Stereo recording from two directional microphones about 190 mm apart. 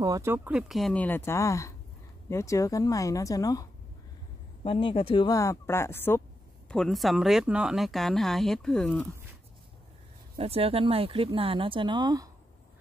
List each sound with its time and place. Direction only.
0.0 s speech: 15° right (ahead or behind); by 3.6 s 20° left (ahead or behind)
4.6 s speech: 25° left (ahead or behind); by 9.0 s 5° left (ahead or behind)
10.3 s speech: 30° right (ahead or behind)